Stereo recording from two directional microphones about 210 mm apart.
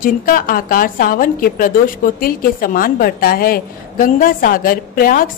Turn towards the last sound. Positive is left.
turn(degrees=45)  # may be behind; listen again after turning